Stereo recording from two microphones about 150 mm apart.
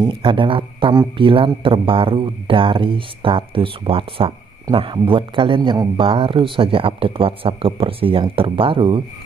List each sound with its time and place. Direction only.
0.0 s speech: 35° right (ahead or behind)